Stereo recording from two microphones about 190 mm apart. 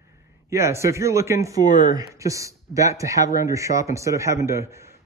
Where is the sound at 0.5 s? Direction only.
15° right (ahead or behind).